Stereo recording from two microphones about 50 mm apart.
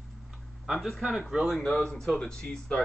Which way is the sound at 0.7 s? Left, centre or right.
Centre.